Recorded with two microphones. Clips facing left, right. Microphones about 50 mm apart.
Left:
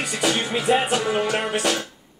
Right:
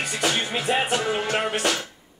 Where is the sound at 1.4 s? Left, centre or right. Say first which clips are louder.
Left 1 dB; right.